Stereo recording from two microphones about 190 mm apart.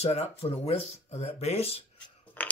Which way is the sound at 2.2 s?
10° left (ahead or behind).